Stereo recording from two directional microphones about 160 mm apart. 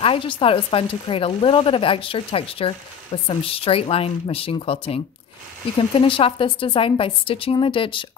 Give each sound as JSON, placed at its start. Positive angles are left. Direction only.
{"t": 0.0, "sound": "speech", "side_deg": 35}